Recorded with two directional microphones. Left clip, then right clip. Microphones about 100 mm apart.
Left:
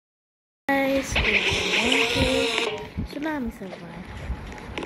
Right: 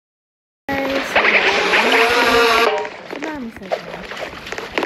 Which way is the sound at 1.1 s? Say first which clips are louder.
Right 13 dB; 15° right (ahead or behind).